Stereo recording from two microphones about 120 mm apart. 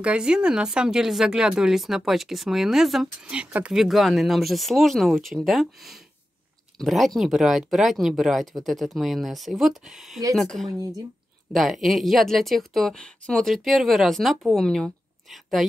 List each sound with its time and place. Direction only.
0.0 s speech: 10° right (ahead or behind)
10.7 s speech: 30° right (ahead or behind)
11.5 s speech: centre (ahead or behind)